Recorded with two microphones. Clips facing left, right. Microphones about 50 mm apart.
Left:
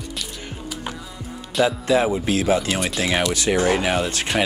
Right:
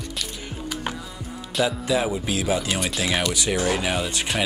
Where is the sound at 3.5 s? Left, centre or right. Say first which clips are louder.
Left 6 dB; left.